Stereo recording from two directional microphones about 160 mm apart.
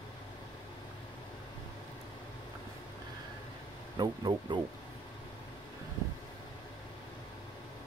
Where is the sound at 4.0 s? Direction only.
30° right (ahead or behind).